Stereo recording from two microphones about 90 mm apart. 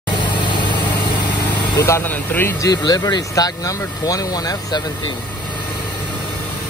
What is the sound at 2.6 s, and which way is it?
Speech, 50° left (ahead or behind).